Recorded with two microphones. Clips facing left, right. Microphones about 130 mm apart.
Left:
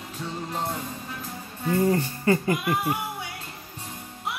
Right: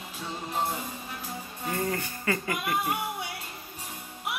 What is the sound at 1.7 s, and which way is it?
Speech, 30° left (ahead or behind).